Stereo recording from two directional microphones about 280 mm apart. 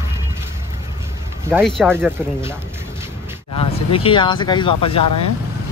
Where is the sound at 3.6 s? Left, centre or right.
Centre.